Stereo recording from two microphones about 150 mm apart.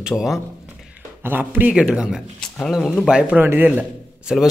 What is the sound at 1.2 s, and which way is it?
A man's voice, 15° right (ahead or behind).